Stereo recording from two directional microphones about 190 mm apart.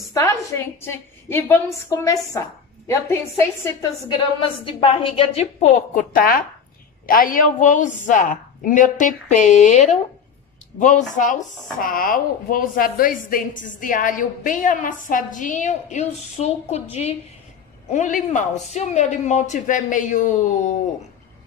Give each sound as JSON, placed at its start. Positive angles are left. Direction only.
{"t": 0.1, "sound": "a woman's voice", "side_deg": 15}
{"t": 4.6, "sound": "a man's voice", "side_deg": 30}